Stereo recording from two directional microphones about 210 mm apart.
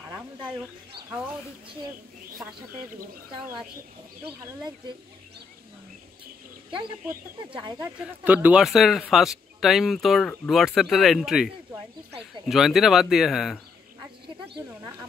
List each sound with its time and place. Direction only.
1.9 s a woman's voice: 15° right (ahead or behind)
4.4 s a woman's voice: 15° right (ahead or behind)
7.4 s speech: 25° right (ahead or behind)
8.2 s speech: 10° right (ahead or behind)
14.8 s a woman's voice: 15° right (ahead or behind)